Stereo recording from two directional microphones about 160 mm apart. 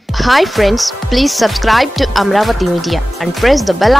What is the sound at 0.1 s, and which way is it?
Speech, centre (ahead or behind).